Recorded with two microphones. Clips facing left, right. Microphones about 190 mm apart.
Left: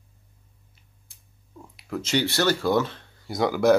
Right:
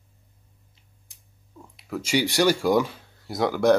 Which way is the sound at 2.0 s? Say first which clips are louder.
Right 2 dB; 10° right (ahead or behind).